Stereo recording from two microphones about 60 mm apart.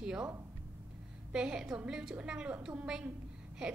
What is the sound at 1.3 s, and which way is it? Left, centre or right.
A woman's voice, centre.